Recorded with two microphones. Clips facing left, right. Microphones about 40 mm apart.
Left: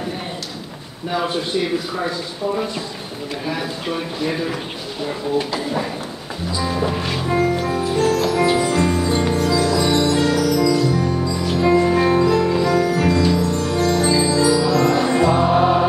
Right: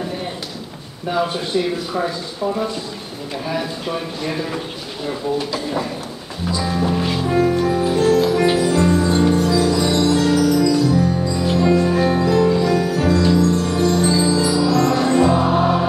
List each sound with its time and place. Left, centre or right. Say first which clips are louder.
6.5 s music: right 1 dB; centre
8.5 s music: right 2 dB; centre
9.8 s music: right 1 dB; centre
11.6 s music: left 2 dB; centre
12.2 s music: right 1 dB; centre